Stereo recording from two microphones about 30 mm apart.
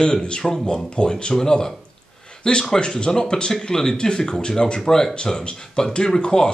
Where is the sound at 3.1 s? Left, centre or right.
Left.